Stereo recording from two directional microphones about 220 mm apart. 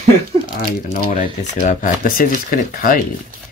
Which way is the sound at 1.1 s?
30° left (ahead or behind).